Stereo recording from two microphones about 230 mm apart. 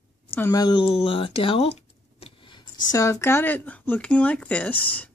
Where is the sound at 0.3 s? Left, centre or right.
Centre.